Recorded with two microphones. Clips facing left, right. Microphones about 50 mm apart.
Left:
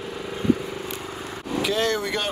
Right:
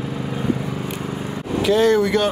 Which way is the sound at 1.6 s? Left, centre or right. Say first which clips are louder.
Right 8 dB; centre.